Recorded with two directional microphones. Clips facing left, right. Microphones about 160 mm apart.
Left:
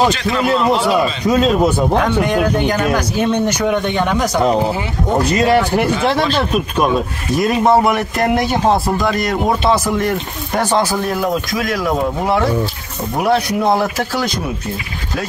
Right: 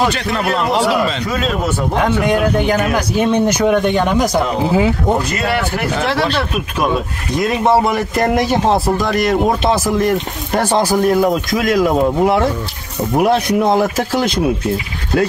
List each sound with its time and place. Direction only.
2.2 s speech: 10° right (ahead or behind)